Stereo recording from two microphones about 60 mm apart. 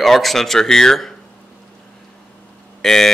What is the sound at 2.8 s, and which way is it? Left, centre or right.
Speech, centre.